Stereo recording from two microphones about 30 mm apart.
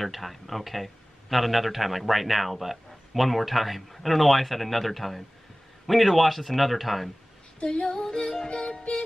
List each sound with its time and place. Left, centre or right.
0.0 s speech: centre
7.6 s female singing: left